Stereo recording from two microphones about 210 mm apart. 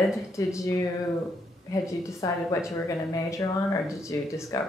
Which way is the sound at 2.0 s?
15° left (ahead or behind).